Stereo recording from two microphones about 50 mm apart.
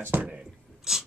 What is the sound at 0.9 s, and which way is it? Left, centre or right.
Filing, centre.